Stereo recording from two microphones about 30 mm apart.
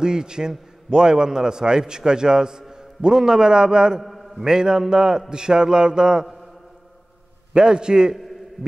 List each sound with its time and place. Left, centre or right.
0.0 s a man's voice: right
4.0 s a sound: centre
4.5 s a man's voice: right
7.5 s a man's voice: right